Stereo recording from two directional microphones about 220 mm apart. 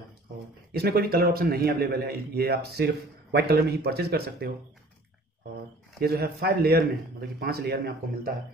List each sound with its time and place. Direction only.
0.7 s a man's voice: 45° right (ahead or behind)
5.9 s a man's voice: 45° right (ahead or behind)